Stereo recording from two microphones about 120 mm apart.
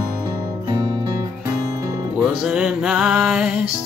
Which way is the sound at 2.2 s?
5° right (ahead or behind).